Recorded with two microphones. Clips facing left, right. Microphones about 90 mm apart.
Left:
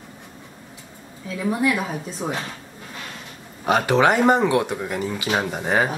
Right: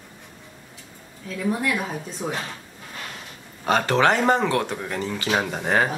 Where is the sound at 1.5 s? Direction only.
5° left (ahead or behind).